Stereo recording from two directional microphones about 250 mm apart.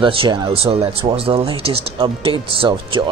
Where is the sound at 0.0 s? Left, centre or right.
Right.